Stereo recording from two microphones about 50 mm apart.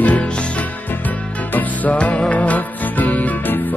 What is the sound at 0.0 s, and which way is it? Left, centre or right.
Music, left.